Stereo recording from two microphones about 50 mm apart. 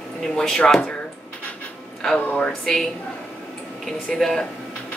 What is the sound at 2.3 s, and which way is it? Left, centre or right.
Speech, centre.